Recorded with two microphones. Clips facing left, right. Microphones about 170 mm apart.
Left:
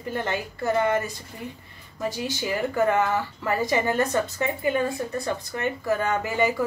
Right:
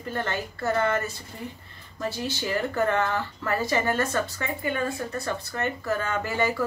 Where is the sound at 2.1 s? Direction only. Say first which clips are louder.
Right 1 dB; 15° left (ahead or behind).